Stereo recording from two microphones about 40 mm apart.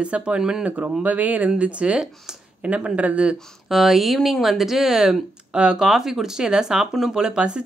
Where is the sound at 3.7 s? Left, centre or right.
Centre; by 7.6 s right.